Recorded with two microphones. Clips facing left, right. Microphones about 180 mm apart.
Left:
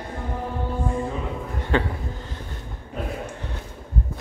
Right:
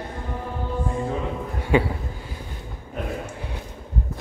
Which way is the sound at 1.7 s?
10° right (ahead or behind).